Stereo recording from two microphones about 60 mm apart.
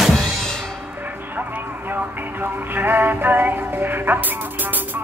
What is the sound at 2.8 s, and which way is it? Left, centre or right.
Music, right.